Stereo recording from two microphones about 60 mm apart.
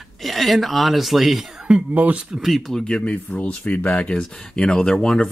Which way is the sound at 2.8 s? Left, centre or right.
Centre.